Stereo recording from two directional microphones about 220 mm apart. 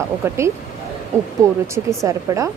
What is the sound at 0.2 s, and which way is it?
Speech, 10° right (ahead or behind).